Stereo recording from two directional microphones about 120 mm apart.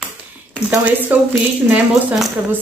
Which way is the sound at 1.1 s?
15° right (ahead or behind).